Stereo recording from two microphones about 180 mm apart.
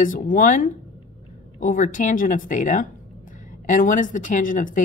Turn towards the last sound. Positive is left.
turn(degrees=45)  # may be behind; listen again after turning